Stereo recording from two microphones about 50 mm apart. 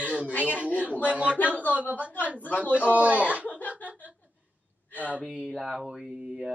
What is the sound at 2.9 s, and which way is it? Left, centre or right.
Speech, right.